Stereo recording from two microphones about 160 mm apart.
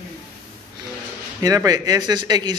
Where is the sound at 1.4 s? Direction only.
20° right (ahead or behind).